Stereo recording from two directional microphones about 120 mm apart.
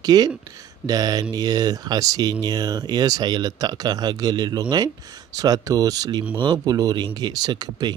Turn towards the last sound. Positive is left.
turn(degrees=-35)  # may be behind; listen again after turning